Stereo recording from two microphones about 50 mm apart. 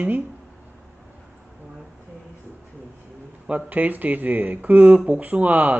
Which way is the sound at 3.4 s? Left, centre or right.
Right.